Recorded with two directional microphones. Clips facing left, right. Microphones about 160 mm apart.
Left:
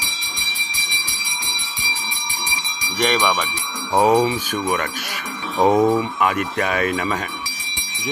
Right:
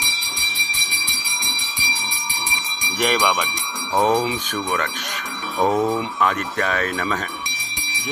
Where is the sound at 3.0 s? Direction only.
5° right (ahead or behind).